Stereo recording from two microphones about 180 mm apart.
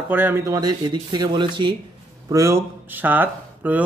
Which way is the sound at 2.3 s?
15° right (ahead or behind).